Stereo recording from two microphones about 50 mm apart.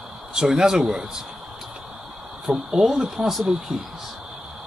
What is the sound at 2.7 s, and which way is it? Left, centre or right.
Speech, centre.